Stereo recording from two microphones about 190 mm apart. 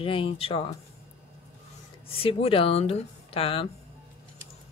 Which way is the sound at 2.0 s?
30° left (ahead or behind).